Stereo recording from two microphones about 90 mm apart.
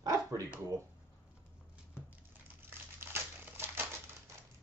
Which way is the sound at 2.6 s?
25° right (ahead or behind).